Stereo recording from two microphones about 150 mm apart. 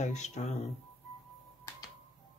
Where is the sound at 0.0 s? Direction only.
50° left (ahead or behind).